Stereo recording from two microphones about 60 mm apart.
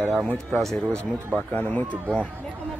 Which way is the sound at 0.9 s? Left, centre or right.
Right.